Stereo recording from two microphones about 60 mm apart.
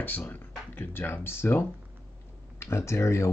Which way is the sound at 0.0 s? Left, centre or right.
Left.